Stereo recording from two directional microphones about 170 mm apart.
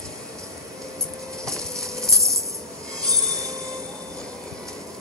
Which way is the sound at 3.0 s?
5° left (ahead or behind).